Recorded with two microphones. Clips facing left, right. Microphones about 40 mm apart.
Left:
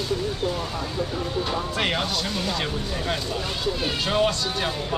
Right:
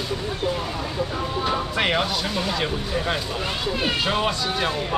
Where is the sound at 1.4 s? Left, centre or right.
Centre.